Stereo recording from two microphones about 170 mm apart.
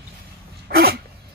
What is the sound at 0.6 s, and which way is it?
Dog, 70° right (ahead or behind).